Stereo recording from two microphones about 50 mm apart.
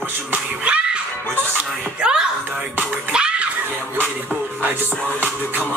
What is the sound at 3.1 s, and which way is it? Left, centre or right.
Music, centre.